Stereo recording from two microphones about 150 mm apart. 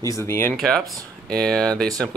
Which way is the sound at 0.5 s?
Centre (ahead or behind).